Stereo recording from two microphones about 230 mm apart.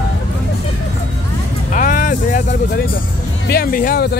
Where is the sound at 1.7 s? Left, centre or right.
Left.